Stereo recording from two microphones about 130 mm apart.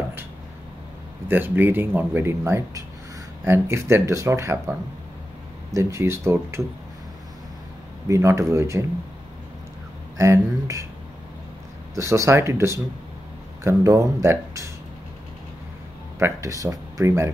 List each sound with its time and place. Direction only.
1.3 s speech: 15° right (ahead or behind)
8.1 s speech: 25° right (ahead or behind)
10.1 s speech: 25° right (ahead or behind)
11.9 s speech: 25° right (ahead or behind)
16.2 s speech: 25° right (ahead or behind)